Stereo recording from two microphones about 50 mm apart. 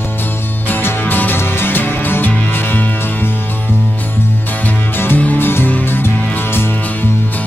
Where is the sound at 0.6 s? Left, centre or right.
Left.